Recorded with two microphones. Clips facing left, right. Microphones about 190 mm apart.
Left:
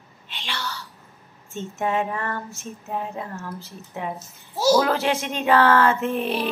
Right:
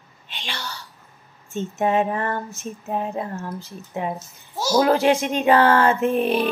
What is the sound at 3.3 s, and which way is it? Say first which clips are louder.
Speech: right 3 dB; 15° right (ahead or behind).